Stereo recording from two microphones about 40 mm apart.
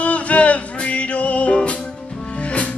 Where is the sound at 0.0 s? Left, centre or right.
Left.